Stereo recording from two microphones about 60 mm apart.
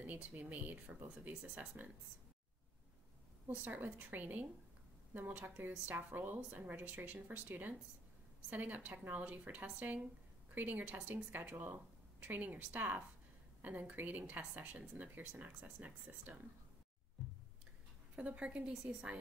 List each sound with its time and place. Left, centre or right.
0.0 s speech: right
3.4 s speech: right
18.1 s a woman's voice: right